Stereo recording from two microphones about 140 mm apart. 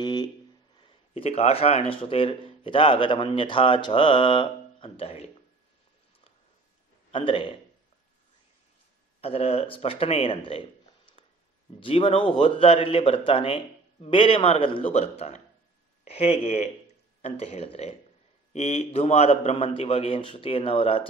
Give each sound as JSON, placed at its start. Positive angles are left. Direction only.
{"t": 0.0, "sound": "a sound", "side_deg": 30}
{"t": 1.1, "sound": "a man's voice", "side_deg": 45}
{"t": 7.1, "sound": "a man's voice", "side_deg": 40}
{"t": 9.2, "sound": "speech", "side_deg": 45}
{"t": 11.8, "sound": "a man's voice", "side_deg": 40}